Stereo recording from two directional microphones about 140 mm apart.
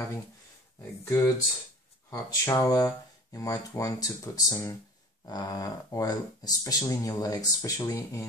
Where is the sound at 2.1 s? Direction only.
25° left (ahead or behind).